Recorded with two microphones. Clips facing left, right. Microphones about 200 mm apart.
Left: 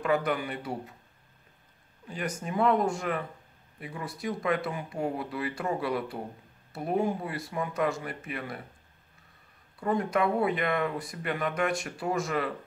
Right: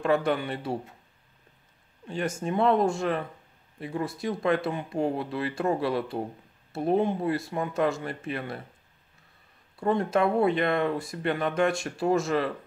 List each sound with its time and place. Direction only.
0.0 s speech: 30° right (ahead or behind)
2.0 s speech: 25° right (ahead or behind)
9.8 s speech: 25° right (ahead or behind)